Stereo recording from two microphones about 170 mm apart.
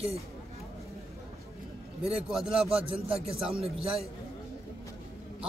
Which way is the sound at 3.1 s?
35° right (ahead or behind).